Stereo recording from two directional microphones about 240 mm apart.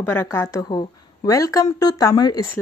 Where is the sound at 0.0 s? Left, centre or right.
Centre.